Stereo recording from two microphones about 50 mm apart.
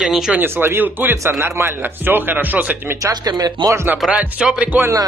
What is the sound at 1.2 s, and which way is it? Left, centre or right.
Speech, right.